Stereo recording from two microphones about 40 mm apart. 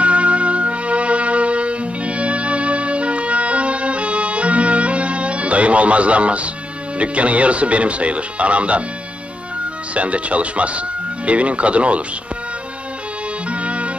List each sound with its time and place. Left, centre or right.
0.0 s music: right
7.0 s speech: right
9.9 s speech: right
13.5 s music: right